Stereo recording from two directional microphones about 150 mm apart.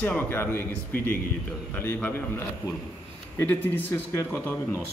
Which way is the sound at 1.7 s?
15° left (ahead or behind).